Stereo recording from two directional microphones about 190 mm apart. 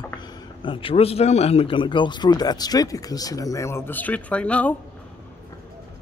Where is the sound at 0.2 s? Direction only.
25° left (ahead or behind); by 4.7 s 5° left (ahead or behind).